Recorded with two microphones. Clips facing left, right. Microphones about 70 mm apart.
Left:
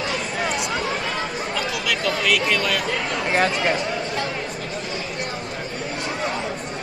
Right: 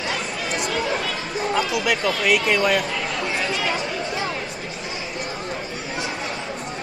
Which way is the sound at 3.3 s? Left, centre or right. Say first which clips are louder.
Left 7 dB; left.